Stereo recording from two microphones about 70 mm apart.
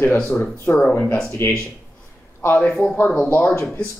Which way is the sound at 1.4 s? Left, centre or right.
Left.